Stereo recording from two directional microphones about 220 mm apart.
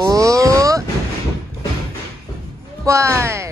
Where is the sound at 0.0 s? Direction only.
15° right (ahead or behind).